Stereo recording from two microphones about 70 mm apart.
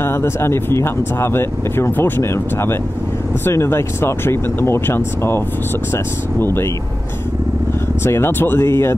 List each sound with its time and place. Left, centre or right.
0.0 s speech: left
6.4 s speech: left
8.0 s speech: left